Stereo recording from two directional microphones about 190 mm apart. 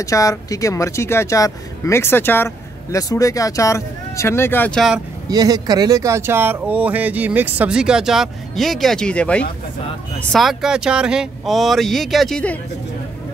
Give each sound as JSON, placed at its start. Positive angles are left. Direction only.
{"t": 0.0, "sound": "speech", "side_deg": 15}
{"t": 5.3, "sound": "speech", "side_deg": -20}